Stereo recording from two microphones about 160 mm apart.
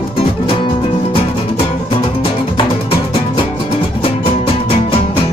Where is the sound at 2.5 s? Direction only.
35° left (ahead or behind).